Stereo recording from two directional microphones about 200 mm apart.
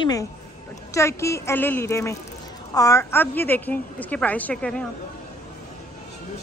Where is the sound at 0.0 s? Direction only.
20° left (ahead or behind).